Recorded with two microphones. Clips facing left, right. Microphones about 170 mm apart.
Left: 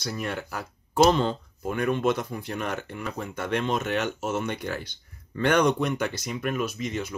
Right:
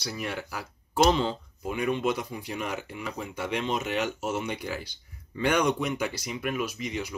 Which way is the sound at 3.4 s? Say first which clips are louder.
Left 3 dB; 55° left (ahead or behind).